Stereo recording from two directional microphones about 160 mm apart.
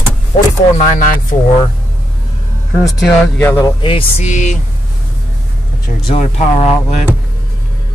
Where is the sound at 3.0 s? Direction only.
10° left (ahead or behind).